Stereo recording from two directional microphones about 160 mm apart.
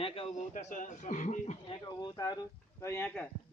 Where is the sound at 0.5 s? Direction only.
55° left (ahead or behind).